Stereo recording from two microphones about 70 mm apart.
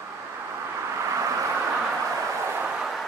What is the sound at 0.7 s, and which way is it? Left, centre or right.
Vehicle, right.